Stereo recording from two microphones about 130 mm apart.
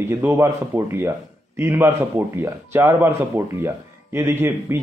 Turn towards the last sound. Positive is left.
turn(degrees=-20)  # may be behind; listen again after turning